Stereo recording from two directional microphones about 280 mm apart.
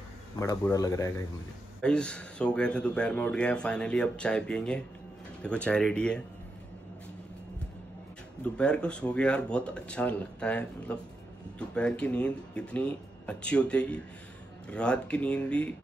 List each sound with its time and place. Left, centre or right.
0.4 s speech: centre
8.5 s speech: centre